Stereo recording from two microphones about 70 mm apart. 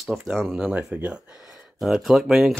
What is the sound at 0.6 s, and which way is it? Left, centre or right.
Speech, centre.